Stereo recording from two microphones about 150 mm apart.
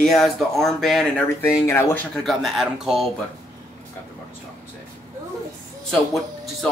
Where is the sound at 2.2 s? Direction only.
Centre (ahead or behind).